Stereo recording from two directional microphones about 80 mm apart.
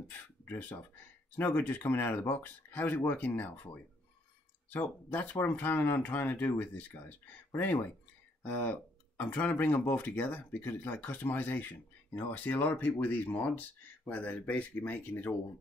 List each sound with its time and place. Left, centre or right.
0.5 s speech: left